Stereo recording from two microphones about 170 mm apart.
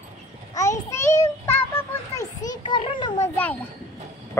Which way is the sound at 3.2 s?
10° left (ahead or behind).